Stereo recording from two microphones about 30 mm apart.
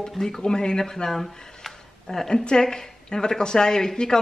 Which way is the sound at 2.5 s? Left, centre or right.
Left.